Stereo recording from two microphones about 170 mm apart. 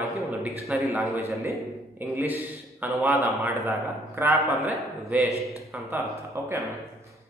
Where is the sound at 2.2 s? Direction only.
10° right (ahead or behind).